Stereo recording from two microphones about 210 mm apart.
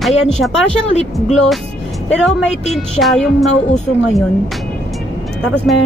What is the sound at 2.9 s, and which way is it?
Speech, centre (ahead or behind).